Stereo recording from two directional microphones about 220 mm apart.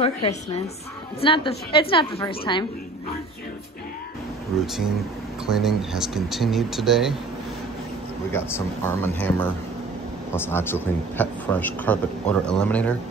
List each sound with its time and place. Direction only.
0.0 s a woman's voice: 25° left (ahead or behind)
5.5 s speech: centre (ahead or behind)
8.3 s a man's voice: 10° left (ahead or behind)